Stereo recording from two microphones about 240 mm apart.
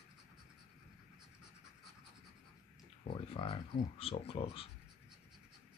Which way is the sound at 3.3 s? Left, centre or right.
Left.